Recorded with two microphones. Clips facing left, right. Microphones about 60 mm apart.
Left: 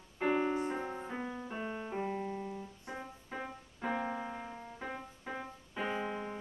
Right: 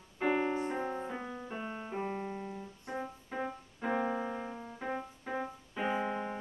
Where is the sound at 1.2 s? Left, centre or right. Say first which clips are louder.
Left 1 dB; centre.